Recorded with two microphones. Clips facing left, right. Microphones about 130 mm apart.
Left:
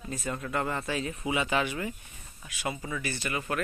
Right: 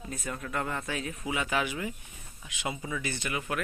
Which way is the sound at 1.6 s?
10° right (ahead or behind).